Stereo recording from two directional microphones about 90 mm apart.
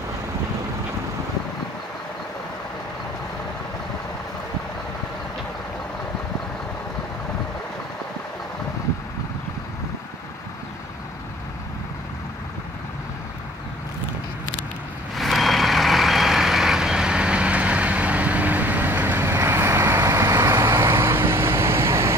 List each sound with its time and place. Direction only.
15.1 s vehicle: centre (ahead or behind); by 22.1 s 30° right (ahead or behind)